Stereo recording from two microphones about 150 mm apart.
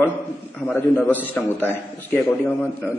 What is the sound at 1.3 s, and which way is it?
A man's voice, 15° left (ahead or behind).